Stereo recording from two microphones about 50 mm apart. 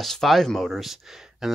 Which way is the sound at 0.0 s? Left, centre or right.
Centre.